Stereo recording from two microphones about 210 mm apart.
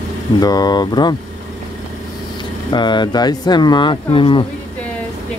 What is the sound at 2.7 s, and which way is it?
Speech, 20° left (ahead or behind).